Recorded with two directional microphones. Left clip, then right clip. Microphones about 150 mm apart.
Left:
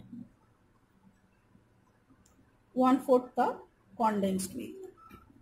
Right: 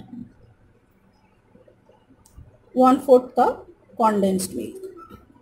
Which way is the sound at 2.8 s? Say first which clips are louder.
Right 11 dB; 35° right (ahead or behind).